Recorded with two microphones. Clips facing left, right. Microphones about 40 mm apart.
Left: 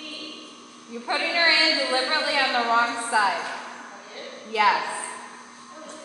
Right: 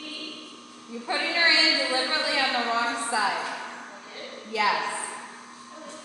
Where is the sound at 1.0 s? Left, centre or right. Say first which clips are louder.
Left 1 dB; left.